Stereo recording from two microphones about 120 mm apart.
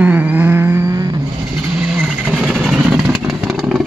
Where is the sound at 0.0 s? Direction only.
15° right (ahead or behind).